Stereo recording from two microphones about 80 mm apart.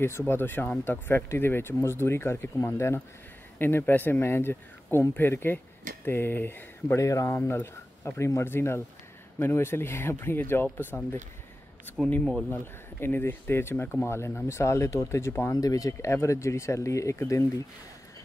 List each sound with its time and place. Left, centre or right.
0.3 s speech: left
7.0 s speech: left
12.4 s speech: left
15.5 s speech: left
15.9 s speech: left